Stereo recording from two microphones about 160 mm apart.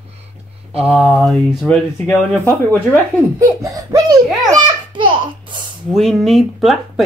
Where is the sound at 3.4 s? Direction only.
20° right (ahead or behind).